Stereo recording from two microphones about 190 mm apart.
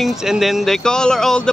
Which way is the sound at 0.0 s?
Centre (ahead or behind).